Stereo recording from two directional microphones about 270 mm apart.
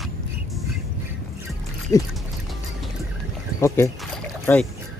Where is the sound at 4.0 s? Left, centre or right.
Centre.